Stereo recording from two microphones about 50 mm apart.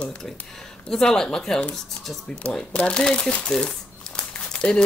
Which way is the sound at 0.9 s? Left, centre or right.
Centre.